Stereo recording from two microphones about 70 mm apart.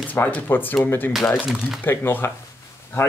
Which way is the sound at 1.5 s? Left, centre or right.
Centre.